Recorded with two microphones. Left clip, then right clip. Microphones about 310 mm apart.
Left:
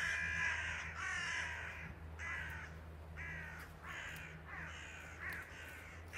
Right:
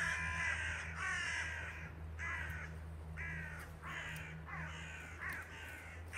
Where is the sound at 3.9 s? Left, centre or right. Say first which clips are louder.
Right 2 dB; centre.